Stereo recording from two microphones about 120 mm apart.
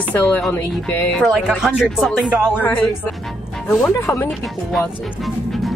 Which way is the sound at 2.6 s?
15° left (ahead or behind).